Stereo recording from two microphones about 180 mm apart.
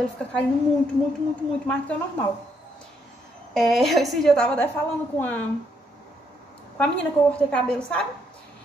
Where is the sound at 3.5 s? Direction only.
Centre (ahead or behind).